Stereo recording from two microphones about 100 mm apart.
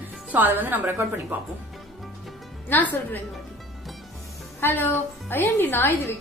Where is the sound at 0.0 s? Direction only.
20° right (ahead or behind).